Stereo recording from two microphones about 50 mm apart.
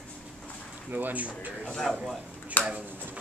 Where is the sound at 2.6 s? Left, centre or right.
Left.